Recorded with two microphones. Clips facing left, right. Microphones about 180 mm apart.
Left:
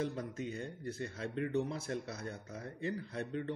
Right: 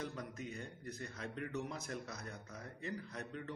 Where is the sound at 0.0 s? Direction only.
30° left (ahead or behind).